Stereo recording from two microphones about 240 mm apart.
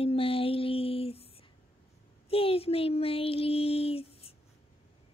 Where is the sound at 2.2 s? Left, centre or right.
Left.